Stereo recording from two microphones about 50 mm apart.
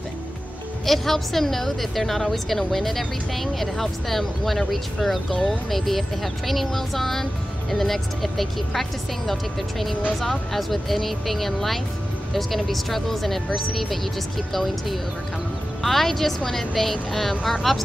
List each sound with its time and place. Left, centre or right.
0.8 s a woman's voice: centre